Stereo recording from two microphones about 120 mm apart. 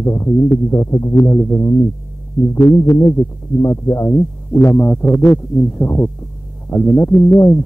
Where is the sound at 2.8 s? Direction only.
25° left (ahead or behind).